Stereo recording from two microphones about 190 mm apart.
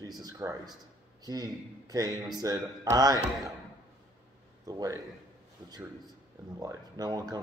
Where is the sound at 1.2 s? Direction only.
20° right (ahead or behind).